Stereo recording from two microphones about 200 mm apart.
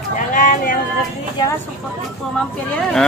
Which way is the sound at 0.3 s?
40° left (ahead or behind).